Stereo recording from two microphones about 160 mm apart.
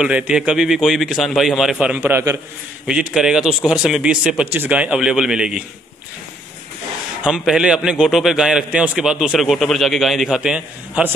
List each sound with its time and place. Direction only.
0.0 s a man's voice: 5° right (ahead or behind)
2.0 s a man's voice: 15° right (ahead or behind)
2.9 s a man's voice: 5° right (ahead or behind)
7.2 s a man's voice: 5° right (ahead or behind)